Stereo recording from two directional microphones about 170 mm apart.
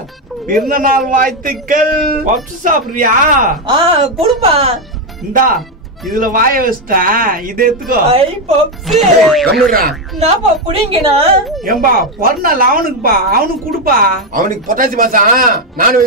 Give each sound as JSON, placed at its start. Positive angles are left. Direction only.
{"t": 0.7, "sound": "a man's voice", "side_deg": -55}
{"t": 3.6, "sound": "speech", "side_deg": -30}
{"t": 5.3, "sound": "a man's voice", "side_deg": -55}
{"t": 8.8, "sound": "speech", "side_deg": 0}
{"t": 9.7, "sound": "speech", "side_deg": -60}
{"t": 10.1, "sound": "a woman's voice", "side_deg": -40}
{"t": 11.6, "sound": "speech", "side_deg": -55}